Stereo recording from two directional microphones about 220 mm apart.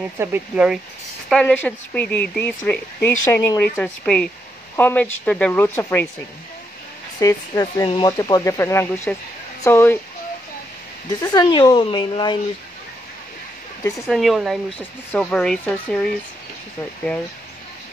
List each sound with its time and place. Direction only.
0.2 s speech: 5° right (ahead or behind)
1.3 s speech: 5° left (ahead or behind)
7.2 s speech: 15° left (ahead or behind)
11.1 s speech: 20° left (ahead or behind)
14.0 s speech: centre (ahead or behind)